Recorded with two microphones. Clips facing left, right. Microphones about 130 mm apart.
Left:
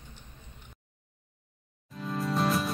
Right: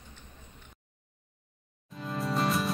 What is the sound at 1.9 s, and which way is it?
Music, centre (ahead or behind).